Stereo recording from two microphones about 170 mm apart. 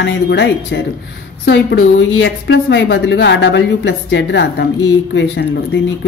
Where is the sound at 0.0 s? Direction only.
90° left.